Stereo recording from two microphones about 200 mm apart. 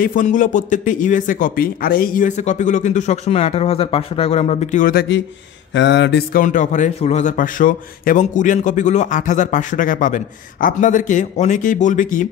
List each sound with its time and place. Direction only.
0.0 s speech: 40° left (ahead or behind)
5.8 s speech: 60° left (ahead or behind); by 12.3 s 40° left (ahead or behind)